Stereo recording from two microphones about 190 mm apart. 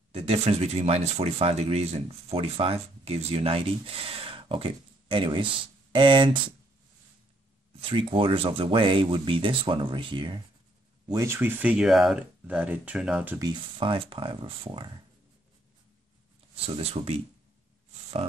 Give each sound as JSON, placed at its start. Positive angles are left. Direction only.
{"t": 0.1, "sound": "speech", "side_deg": -30}
{"t": 7.9, "sound": "speech", "side_deg": -25}
{"t": 11.1, "sound": "speech", "side_deg": -15}
{"t": 13.4, "sound": "speech", "side_deg": -25}
{"t": 16.6, "sound": "speech", "side_deg": -30}